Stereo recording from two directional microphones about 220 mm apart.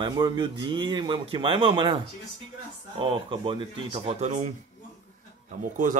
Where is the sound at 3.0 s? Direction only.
20° right (ahead or behind).